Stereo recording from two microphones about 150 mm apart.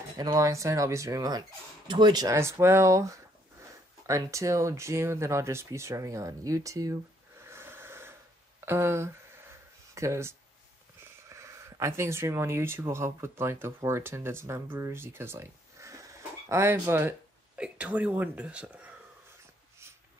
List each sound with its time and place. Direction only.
0.2 s speech: 25° right (ahead or behind); by 18.9 s 10° right (ahead or behind)